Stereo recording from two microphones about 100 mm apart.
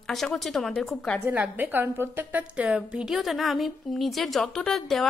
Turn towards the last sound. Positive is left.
turn(degrees=5)  # may be behind; listen again after turning